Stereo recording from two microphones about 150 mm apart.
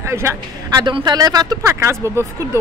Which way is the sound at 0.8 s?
30° right (ahead or behind).